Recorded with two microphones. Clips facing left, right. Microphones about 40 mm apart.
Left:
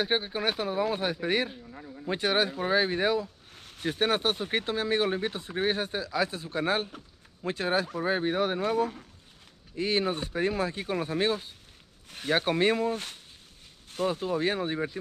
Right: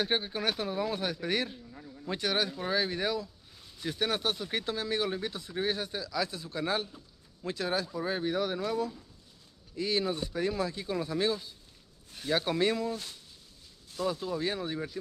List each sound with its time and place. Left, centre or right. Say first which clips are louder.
0.0 s speech: left 3 dB; centre
3.5 s a sound: left 4 dB; left
3.8 s speech: left 4 dB; left